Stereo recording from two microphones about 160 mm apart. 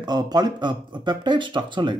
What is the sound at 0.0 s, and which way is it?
Speech, 25° right (ahead or behind).